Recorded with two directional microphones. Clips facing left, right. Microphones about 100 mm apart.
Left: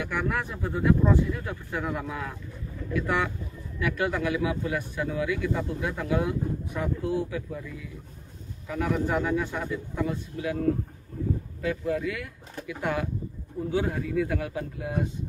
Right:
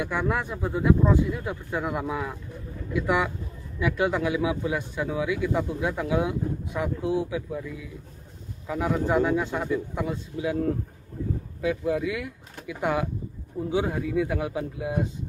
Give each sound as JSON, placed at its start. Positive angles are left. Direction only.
{"t": 0.0, "sound": "speech", "side_deg": -20}
{"t": 8.6, "sound": "speech", "side_deg": -20}
{"t": 11.6, "sound": "speech", "side_deg": -15}